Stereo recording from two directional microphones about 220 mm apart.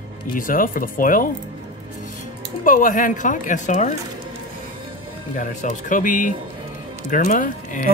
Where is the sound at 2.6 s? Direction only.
35° left (ahead or behind).